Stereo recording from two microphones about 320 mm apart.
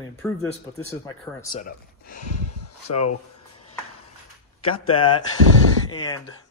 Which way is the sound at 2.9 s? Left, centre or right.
Left.